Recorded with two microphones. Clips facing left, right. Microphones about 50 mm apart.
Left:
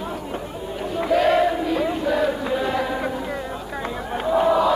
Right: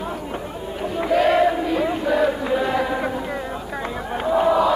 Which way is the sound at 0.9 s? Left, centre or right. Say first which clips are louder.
Right 1 dB; centre.